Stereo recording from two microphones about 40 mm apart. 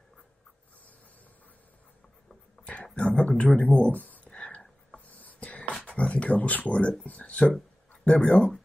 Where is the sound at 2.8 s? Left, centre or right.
Left.